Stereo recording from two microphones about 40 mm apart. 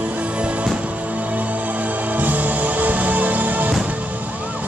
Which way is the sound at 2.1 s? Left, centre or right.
Right.